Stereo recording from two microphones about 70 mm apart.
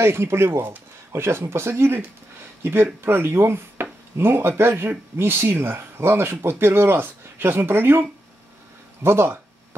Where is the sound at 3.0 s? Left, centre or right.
Right.